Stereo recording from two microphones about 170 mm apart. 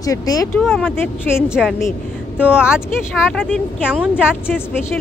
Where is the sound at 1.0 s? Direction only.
15° left (ahead or behind).